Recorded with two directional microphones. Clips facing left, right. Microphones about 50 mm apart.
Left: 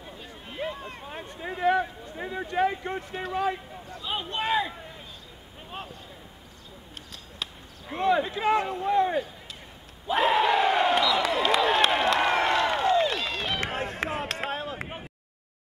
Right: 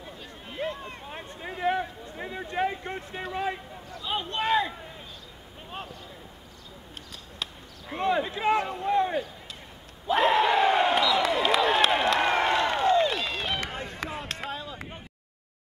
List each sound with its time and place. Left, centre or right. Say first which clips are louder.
0.0 s a sound: even; centre
1.8 s speech: left 3 dB; centre
7.9 s speech: left 2 dB; centre
10.0 s crowd: even; centre
13.7 s run: left 5 dB; left
14.4 s a sound: left 4 dB; left